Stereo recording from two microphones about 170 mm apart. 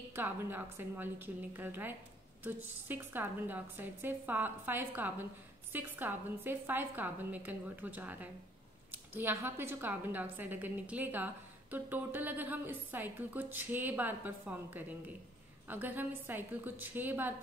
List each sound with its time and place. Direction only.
0.1 s a woman's voice: 10° right (ahead or behind)